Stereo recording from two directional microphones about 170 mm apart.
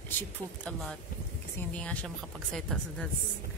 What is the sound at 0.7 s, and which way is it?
A woman's voice, centre (ahead or behind).